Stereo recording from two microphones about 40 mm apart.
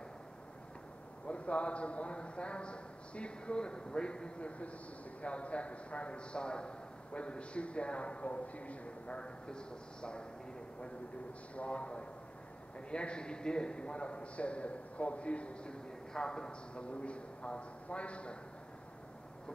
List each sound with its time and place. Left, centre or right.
1.2 s a man's voice: left
11.5 s a man's voice: left